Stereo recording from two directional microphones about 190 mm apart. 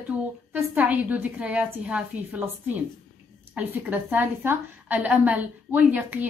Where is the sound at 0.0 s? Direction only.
10° right (ahead or behind).